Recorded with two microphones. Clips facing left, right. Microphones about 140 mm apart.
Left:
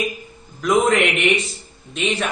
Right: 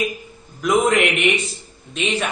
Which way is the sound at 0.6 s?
5° right (ahead or behind).